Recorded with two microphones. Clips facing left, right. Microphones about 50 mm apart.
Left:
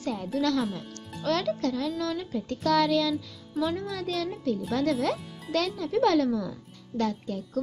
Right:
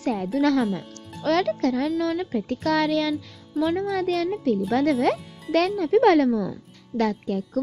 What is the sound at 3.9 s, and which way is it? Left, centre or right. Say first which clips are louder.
Speech: right 7 dB; right.